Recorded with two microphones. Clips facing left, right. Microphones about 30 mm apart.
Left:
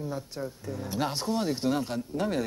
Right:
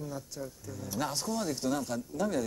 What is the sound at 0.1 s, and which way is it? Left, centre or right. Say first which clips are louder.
Speech: left 5 dB; left.